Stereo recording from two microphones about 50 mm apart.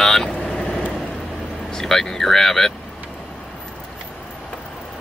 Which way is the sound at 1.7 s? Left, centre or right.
Centre.